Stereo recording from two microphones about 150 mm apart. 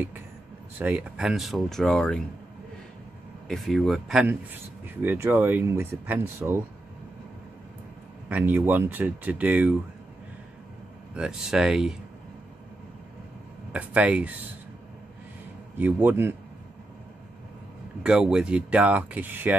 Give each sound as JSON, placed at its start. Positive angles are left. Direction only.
{"t": 0.7, "sound": "speech", "side_deg": -10}
{"t": 3.4, "sound": "speech", "side_deg": 0}
{"t": 8.3, "sound": "speech", "side_deg": -10}
{"t": 11.1, "sound": "speech", "side_deg": -5}
{"t": 13.7, "sound": "speech", "side_deg": -10}
{"t": 15.8, "sound": "speech", "side_deg": -10}
{"t": 18.0, "sound": "speech", "side_deg": -5}